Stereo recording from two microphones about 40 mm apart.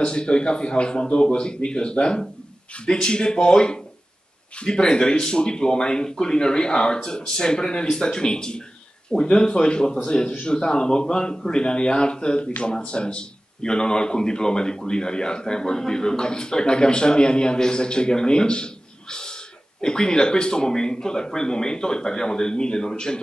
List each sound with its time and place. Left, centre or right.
0.0 s speech: left